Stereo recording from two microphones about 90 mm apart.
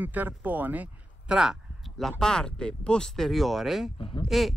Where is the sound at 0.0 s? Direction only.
20° right (ahead or behind).